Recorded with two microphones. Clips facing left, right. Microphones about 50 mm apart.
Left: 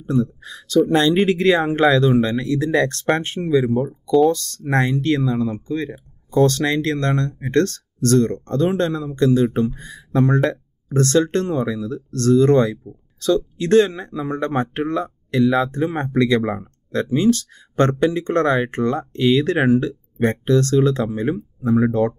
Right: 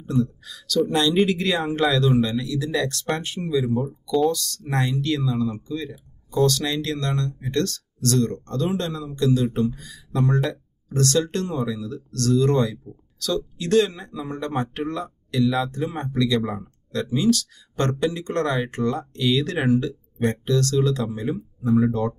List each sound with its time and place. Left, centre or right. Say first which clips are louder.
0.4 s speech: left 5 dB; left
16.1 s speech: left 5 dB; left
16.4 s speech: left 5 dB; left